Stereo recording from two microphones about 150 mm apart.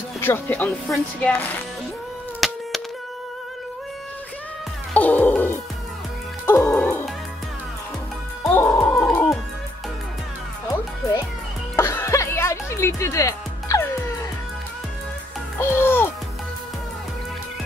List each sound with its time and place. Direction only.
0.2 s speech: 15° left (ahead or behind)
2.4 s a sound: centre (ahead or behind)
4.9 s music: 10° left (ahead or behind)
8.5 s music: 5° left (ahead or behind)
11.7 s music: 20° left (ahead or behind)
15.7 s music: 15° left (ahead or behind)